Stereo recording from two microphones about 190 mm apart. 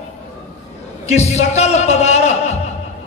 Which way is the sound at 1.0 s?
35° left (ahead or behind).